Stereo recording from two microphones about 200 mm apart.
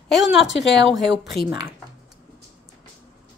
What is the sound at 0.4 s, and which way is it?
Speech, 70° left (ahead or behind).